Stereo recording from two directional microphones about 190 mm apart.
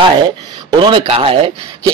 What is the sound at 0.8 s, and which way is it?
A man's voice, 25° right (ahead or behind).